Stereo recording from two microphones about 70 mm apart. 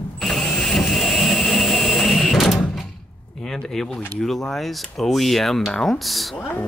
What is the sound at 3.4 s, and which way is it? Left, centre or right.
Speech, centre.